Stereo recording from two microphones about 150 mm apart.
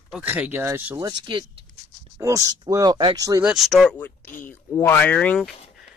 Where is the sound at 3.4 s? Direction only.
5° right (ahead or behind).